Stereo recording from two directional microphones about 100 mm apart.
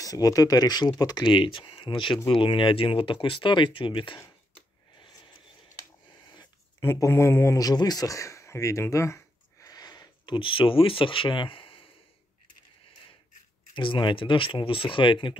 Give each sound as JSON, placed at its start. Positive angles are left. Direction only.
{"t": 0.0, "sound": "speech", "side_deg": 35}
{"t": 1.2, "sound": "speech", "side_deg": 55}
{"t": 4.9, "sound": "a sound", "side_deg": 50}
{"t": 6.8, "sound": "speech", "side_deg": 25}
{"t": 13.7, "sound": "speech", "side_deg": 55}